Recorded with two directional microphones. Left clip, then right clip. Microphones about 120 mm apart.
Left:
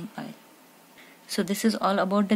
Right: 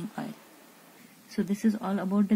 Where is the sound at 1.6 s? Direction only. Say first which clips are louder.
Left 9 dB; 50° left (ahead or behind).